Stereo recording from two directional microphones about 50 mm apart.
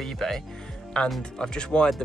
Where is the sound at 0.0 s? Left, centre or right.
Centre.